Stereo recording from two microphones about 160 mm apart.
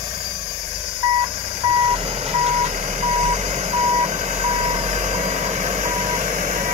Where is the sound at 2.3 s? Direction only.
40° right (ahead or behind).